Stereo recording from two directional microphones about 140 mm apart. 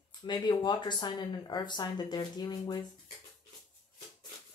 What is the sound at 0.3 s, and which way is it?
Speech, 30° left (ahead or behind).